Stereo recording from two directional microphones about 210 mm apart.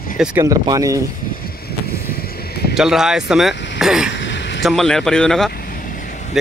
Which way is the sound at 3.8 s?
5° right (ahead or behind).